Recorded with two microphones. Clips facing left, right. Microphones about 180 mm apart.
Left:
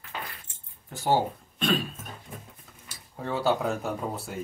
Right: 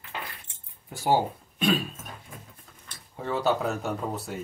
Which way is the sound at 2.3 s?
20° left (ahead or behind).